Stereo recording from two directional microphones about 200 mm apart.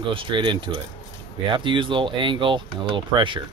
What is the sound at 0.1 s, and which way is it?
Speech, 25° right (ahead or behind).